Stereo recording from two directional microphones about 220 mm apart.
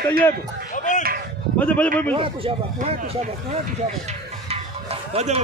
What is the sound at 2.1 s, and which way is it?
Speech, 25° right (ahead or behind).